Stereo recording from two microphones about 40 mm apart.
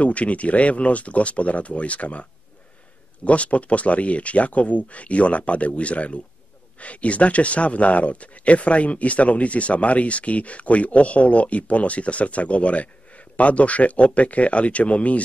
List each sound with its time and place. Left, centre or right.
0.0 s speech: left
3.3 s speech: left